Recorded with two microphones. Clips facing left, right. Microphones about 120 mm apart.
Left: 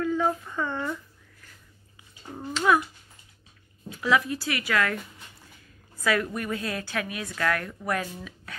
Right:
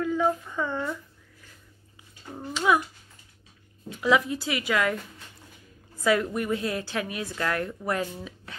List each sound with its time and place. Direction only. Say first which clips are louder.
0.0 s a sound: right 1 dB; 5° right (ahead or behind)
2.5 s speech: left 1 dB; 10° right (ahead or behind)
4.0 s a woman's voice: right 1 dB; 20° right (ahead or behind)
5.9 s a woman's voice: right 2 dB; 20° right (ahead or behind)